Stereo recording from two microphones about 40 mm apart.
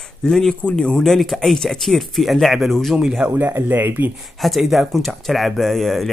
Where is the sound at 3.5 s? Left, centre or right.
Right.